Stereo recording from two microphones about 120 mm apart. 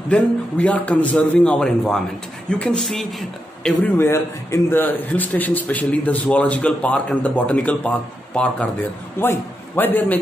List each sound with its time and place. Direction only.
0.1 s a man's voice: 10° left (ahead or behind)
3.8 s a man's voice: 20° left (ahead or behind)